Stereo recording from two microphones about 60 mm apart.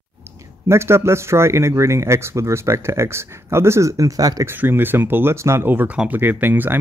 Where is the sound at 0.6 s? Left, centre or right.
Right.